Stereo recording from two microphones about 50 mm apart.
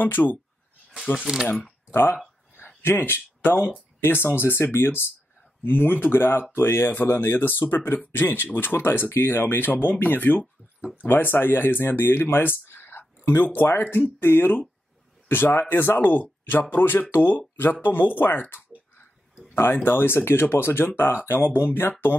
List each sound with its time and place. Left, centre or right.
0.0 s speech: left
1.1 s speech: left
11.1 s speech: left